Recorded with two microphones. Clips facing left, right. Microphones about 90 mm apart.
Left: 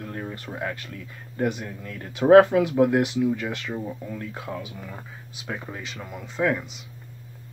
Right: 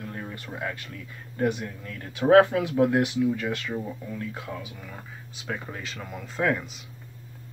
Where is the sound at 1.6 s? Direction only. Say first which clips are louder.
Left 1 dB; 15° left (ahead or behind).